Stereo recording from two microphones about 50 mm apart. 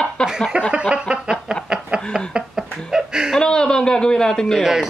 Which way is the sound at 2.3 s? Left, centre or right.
Centre.